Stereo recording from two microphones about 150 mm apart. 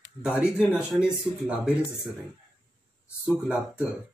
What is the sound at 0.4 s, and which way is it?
Speech, 5° right (ahead or behind).